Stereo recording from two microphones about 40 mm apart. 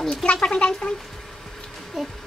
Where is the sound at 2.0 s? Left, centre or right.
Centre.